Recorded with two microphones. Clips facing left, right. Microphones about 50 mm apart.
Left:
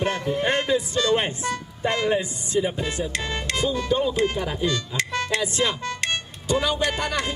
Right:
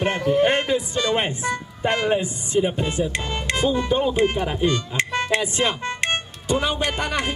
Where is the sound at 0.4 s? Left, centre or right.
Right.